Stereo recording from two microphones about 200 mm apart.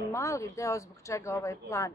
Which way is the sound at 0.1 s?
15° left (ahead or behind).